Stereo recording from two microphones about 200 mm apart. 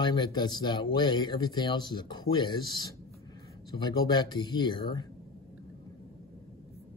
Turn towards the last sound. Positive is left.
turn(degrees=20)  # may be behind; listen again after turning